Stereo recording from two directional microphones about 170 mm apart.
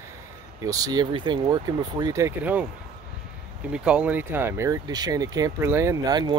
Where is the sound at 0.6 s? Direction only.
20° right (ahead or behind).